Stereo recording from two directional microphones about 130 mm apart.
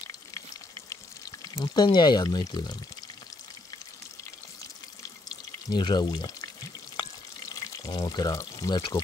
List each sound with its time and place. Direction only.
1.6 s speech: 30° left (ahead or behind)
5.7 s speech: 35° left (ahead or behind)
7.0 s frying: 25° left (ahead or behind)